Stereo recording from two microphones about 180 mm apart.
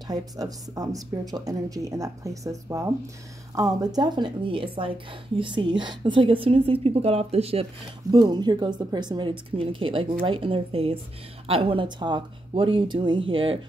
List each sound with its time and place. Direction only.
0.1 s a woman's voice: 20° right (ahead or behind)